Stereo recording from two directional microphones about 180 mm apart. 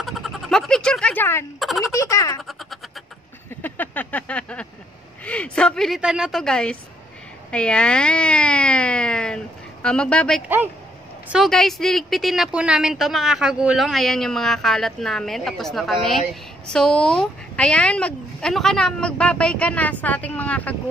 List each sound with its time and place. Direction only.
0.0 s bleat: centre (ahead or behind)
1.6 s speech: centre (ahead or behind)
2.0 s speech: 15° left (ahead or behind)
3.6 s a sound: 10° left (ahead or behind)
5.2 s speech: 5° left (ahead or behind)